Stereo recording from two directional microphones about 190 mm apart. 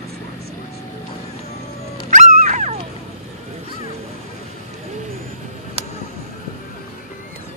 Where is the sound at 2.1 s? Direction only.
40° right (ahead or behind).